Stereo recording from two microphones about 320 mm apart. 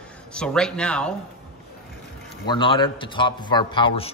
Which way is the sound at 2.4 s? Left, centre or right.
Centre.